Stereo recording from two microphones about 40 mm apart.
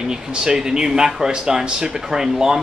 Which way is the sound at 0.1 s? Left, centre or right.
Centre.